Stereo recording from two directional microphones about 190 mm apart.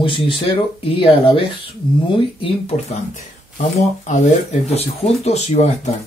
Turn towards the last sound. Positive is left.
turn(degrees=35)  # may be behind; listen again after turning